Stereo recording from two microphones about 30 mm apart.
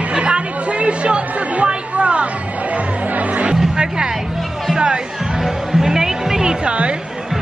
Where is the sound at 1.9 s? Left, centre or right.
Right.